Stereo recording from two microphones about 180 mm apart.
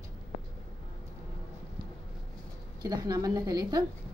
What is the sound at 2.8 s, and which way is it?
A woman's voice, 20° right (ahead or behind).